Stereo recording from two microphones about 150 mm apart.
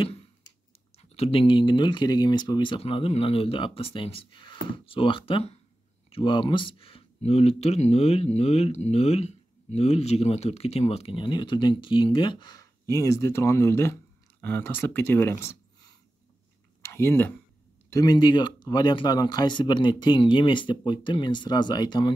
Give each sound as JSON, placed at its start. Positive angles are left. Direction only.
{"t": 0.9, "sound": "speech", "side_deg": 45}
{"t": 16.8, "sound": "a sound", "side_deg": 15}
{"t": 17.8, "sound": "speech", "side_deg": 25}